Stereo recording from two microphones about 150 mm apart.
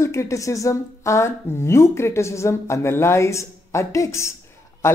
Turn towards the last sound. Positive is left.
turn(degrees=15)  # may be behind; listen again after turning